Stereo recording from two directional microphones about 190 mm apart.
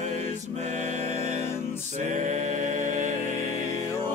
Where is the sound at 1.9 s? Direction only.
40° right (ahead or behind).